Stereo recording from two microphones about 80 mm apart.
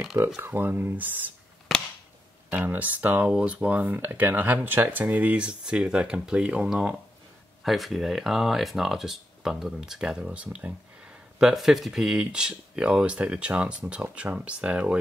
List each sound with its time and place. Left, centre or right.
0.4 s speech: right
2.5 s speech: right